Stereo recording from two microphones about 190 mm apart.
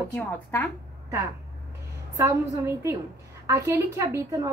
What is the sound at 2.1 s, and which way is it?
A woman's voice, 15° right (ahead or behind).